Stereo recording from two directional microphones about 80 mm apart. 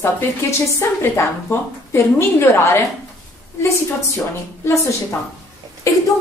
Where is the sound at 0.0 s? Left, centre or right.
Left.